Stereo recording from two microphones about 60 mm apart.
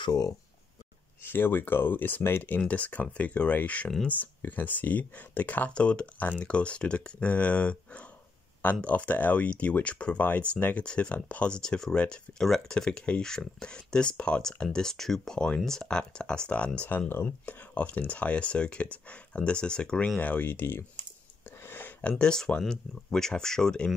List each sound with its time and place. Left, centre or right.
1.2 s speech: left
5.7 s speech: centre
17.1 s speech: left; by 20.1 s centre
20.2 s speech: left
21.5 s a sound: left
22.2 s speech: centre